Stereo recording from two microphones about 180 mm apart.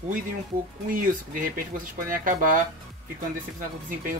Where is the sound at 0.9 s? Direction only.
50° right (ahead or behind).